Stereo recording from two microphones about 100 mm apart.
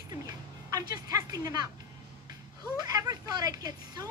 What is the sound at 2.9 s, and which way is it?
A woman's voice, 40° right (ahead or behind).